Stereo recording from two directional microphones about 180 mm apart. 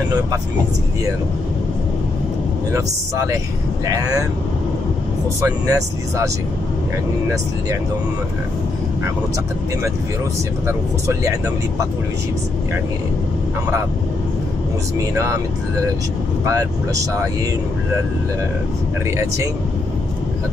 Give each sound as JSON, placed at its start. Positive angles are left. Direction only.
{"t": 2.7, "sound": "speech", "side_deg": -15}
{"t": 5.4, "sound": "speech", "side_deg": -15}
{"t": 16.4, "sound": "speech", "side_deg": -20}
{"t": 19.1, "sound": "speech", "side_deg": -15}